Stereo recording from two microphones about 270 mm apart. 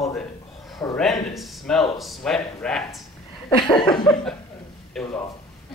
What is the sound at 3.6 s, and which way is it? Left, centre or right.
Laughter, centre.